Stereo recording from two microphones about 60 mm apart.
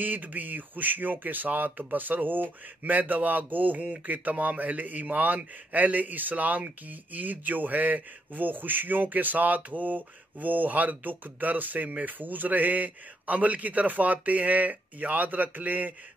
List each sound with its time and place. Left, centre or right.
0.0 s speech: right